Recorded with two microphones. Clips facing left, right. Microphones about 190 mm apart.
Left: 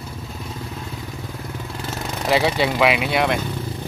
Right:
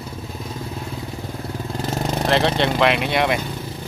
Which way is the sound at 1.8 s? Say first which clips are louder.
Right 7 dB; 35° right (ahead or behind).